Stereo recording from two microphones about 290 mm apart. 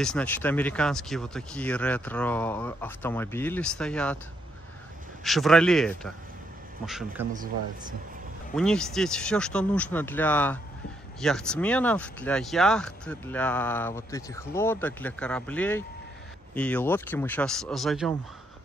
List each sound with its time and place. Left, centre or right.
0.0 s speech: centre
5.2 s speech: centre
8.5 s speech: centre